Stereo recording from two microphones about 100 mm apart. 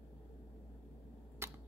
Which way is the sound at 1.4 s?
30° right (ahead or behind).